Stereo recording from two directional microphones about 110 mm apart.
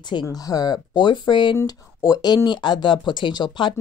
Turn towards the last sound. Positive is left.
turn(degrees=45)  # may be behind; listen again after turning